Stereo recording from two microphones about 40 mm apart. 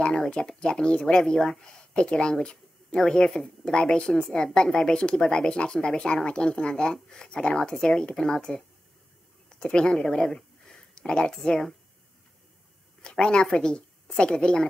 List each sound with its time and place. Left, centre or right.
0.1 s speech: centre
9.5 s speech: left
13.0 s a woman's voice: left